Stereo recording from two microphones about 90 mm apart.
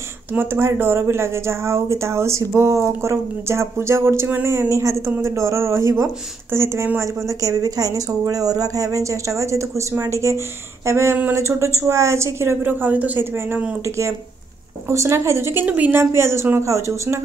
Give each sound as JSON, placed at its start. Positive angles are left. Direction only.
{"t": 0.3, "sound": "speech", "side_deg": -25}
{"t": 15.6, "sound": "a woman's voice", "side_deg": -20}
{"t": 16.0, "sound": "speech", "side_deg": -30}